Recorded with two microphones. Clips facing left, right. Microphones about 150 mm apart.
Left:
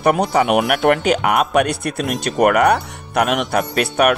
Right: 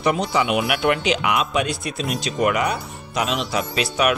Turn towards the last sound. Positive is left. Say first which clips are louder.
# left 5 dB
turn(degrees=55)  # may be behind; listen again after turning